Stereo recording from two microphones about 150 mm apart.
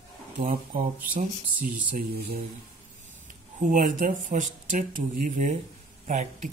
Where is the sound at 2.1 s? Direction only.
90° right.